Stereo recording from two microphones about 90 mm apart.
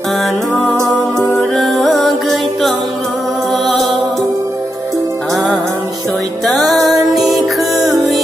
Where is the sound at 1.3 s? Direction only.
Centre (ahead or behind).